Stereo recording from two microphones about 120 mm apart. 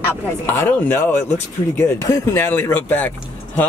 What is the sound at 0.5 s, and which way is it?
Speech, 15° left (ahead or behind).